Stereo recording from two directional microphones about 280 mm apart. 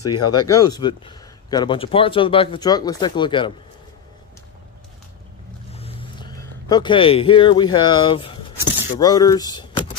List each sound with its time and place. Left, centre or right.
0.0 s speech: centre
5.7 s a sound: left
9.0 s speech: centre